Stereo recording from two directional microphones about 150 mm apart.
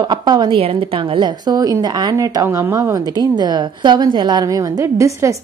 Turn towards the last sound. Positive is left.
turn(degrees=-20)  # may be behind; listen again after turning